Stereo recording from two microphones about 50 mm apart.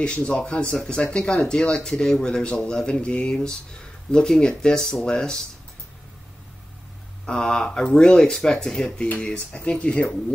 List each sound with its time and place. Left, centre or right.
0.0 s speech: left
7.2 s speech: centre